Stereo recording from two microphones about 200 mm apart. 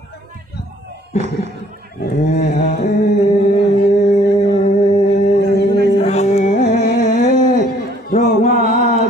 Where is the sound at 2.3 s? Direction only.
35° left (ahead or behind).